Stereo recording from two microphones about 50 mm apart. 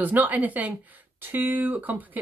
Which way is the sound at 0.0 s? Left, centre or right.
Right.